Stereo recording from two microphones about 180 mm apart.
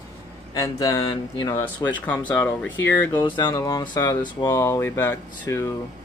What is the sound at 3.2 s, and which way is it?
Speech, 25° left (ahead or behind).